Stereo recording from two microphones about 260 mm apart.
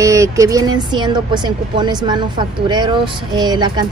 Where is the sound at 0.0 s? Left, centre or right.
Centre.